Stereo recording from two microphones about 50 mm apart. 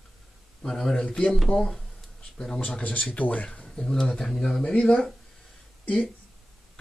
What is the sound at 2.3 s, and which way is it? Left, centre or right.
Speech, centre.